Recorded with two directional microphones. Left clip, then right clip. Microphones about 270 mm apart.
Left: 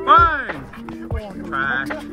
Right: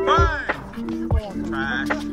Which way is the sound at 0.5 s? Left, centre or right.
Centre.